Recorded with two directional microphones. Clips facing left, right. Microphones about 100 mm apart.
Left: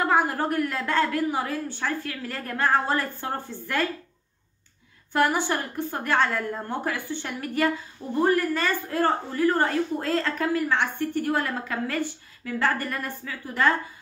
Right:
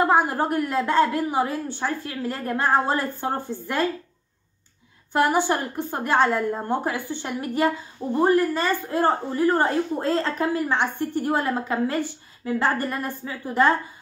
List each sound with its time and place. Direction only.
0.0 s a woman's voice: 20° right (ahead or behind)
5.1 s a woman's voice: 20° right (ahead or behind)